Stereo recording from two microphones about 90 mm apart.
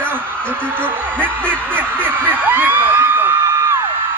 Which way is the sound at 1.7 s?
20° right (ahead or behind).